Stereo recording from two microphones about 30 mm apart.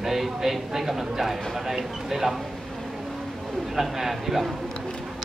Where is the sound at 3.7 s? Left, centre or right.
Centre.